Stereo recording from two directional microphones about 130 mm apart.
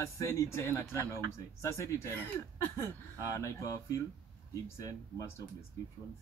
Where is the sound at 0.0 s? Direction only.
25° left (ahead or behind).